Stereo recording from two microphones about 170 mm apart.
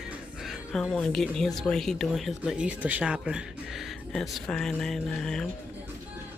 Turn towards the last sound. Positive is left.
turn(degrees=0)  # may be behind; listen again after turning